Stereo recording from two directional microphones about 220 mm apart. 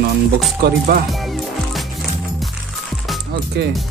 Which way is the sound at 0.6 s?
45° right (ahead or behind).